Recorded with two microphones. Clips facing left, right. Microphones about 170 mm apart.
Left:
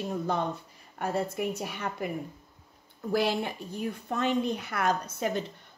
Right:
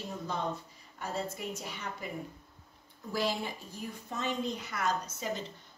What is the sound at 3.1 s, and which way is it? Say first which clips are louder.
Speech: left 6 dB; 65° left (ahead or behind).